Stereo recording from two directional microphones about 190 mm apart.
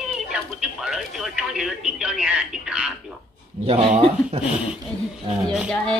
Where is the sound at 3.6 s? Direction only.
30° right (ahead or behind).